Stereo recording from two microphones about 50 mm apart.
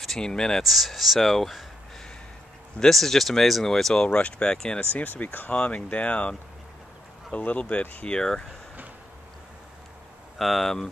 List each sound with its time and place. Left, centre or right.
0.0 s speech: centre
0.6 s speech: centre
2.8 s speech: centre
4.7 s speech: left
5.5 s speech: left
8.1 s speech: centre
10.4 s speech: centre